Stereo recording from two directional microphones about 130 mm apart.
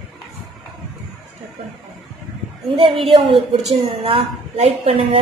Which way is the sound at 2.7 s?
45° right (ahead or behind).